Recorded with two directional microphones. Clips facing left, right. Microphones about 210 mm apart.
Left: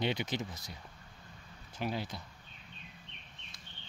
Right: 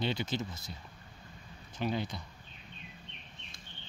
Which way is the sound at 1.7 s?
5° left (ahead or behind).